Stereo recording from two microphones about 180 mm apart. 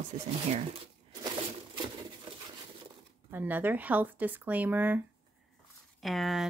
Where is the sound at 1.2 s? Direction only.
25° right (ahead or behind).